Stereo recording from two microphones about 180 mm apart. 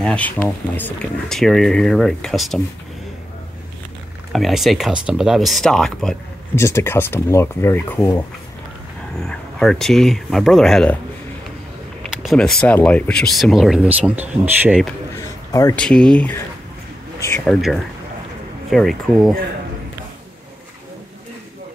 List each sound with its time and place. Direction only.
0.0 s speech: 5° left (ahead or behind)
4.3 s speech: centre (ahead or behind)
6.5 s speech: 15° left (ahead or behind)
9.2 s speech: 5° left (ahead or behind)
12.0 s speech: centre (ahead or behind)
15.1 s a sound: 20° left (ahead or behind)
15.7 s speech: 5° left (ahead or behind)
17.5 s speech: centre (ahead or behind)